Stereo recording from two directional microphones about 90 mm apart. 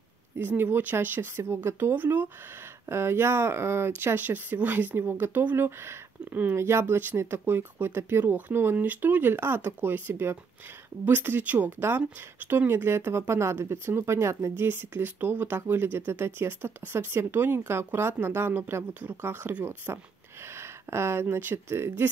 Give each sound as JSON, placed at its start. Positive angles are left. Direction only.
{"t": 0.4, "sound": "speech", "side_deg": -20}